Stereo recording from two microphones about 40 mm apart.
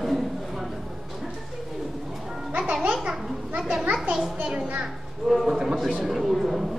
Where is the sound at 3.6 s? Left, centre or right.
Centre.